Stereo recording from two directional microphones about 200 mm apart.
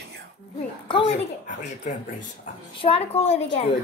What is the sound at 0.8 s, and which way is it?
Speech, 25° left (ahead or behind).